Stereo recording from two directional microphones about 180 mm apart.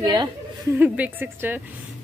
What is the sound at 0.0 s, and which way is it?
Speech, 20° right (ahead or behind).